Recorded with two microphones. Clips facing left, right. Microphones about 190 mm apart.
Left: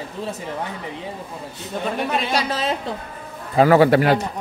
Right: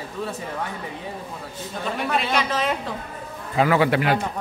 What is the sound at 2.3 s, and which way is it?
A man's voice, 35° left (ahead or behind).